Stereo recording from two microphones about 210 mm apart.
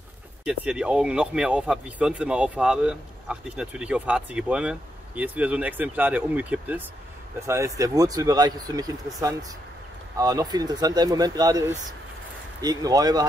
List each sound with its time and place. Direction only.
0.5 s speech: 5° right (ahead or behind)